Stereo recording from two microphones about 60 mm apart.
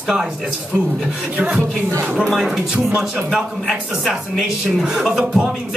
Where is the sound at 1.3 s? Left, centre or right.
Centre.